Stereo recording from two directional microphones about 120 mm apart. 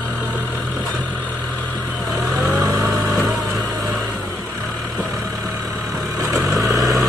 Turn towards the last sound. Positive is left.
turn(degrees=0)  # may be behind; listen again after turning